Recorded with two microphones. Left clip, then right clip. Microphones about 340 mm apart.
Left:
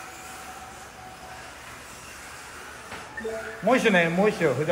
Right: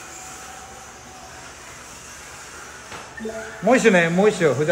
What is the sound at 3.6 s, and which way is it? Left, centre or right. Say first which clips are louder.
Speech: right 5 dB; centre.